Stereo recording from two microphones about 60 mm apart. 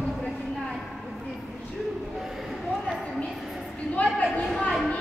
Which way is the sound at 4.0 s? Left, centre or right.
Centre.